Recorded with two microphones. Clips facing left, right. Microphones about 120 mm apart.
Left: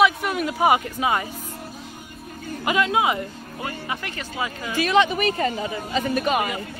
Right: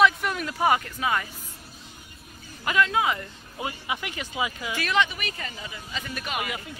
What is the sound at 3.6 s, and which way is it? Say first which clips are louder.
Speech: left 1 dB; 10° right (ahead or behind).